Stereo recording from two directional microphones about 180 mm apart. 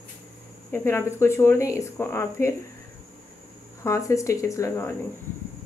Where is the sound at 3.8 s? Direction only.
15° left (ahead or behind).